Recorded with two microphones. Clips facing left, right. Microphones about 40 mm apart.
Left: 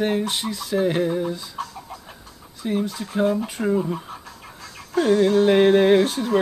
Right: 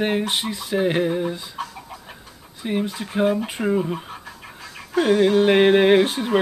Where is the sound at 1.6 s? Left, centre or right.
Centre.